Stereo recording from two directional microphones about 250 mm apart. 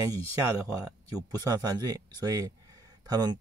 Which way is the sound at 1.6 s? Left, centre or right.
Centre.